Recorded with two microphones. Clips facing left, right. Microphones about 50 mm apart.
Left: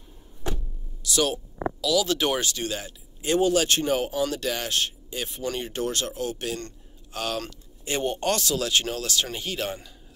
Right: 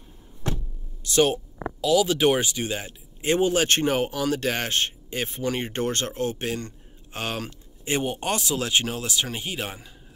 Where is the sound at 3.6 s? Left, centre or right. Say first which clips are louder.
Right 2 dB; right; by 9.8 s centre.